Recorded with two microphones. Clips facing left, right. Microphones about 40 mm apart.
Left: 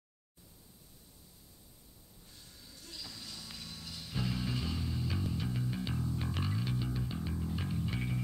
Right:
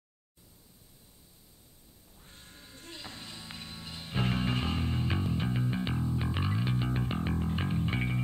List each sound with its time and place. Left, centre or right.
2.2 s music: right